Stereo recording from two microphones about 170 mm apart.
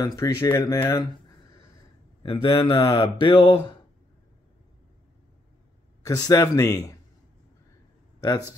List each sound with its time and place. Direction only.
0.0 s speech: 20° left (ahead or behind)
2.2 s speech: 30° left (ahead or behind)
6.0 s speech: 20° left (ahead or behind)